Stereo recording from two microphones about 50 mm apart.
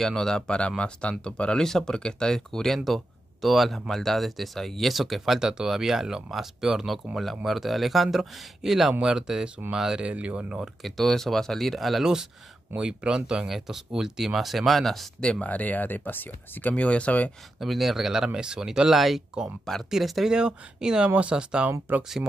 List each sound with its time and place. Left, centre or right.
0.0 s speech: centre
0.5 s speech: left; by 5.4 s centre
5.4 s speech: centre
10.0 s speech: right
10.6 s speech: centre
12.7 s speech: right; by 15.0 s centre
15.4 s speech: left
17.6 s speech: centre
20.2 s speech: centre
21.9 s speech: right